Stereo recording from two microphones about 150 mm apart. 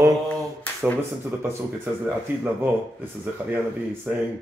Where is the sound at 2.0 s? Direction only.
15° right (ahead or behind).